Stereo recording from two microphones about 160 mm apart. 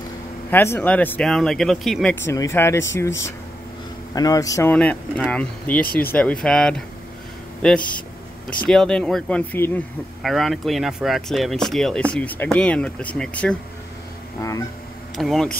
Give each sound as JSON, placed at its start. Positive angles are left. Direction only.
{"t": 0.5, "sound": "speech", "side_deg": 15}
{"t": 2.2, "sound": "speech", "side_deg": 15}
{"t": 4.7, "sound": "speech", "side_deg": 10}
{"t": 15.1, "sound": "speech", "side_deg": 0}